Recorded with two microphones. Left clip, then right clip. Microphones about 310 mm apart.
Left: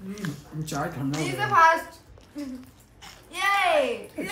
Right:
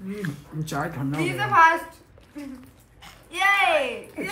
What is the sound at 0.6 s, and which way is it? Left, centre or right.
Speech, centre.